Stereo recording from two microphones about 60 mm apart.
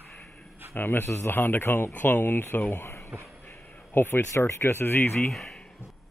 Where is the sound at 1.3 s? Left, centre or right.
Left.